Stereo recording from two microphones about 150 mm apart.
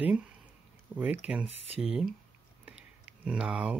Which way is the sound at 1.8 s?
5° right (ahead or behind).